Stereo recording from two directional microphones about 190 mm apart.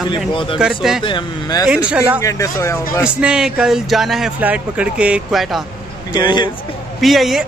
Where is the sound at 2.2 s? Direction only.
15° left (ahead or behind).